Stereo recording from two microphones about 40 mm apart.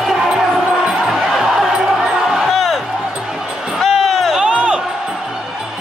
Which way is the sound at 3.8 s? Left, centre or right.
Centre.